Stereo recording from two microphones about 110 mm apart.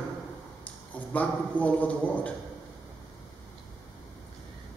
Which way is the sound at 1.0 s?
15° left (ahead or behind).